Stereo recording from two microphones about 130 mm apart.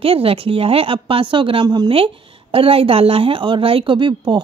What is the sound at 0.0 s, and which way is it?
A woman's voice, 45° right (ahead or behind).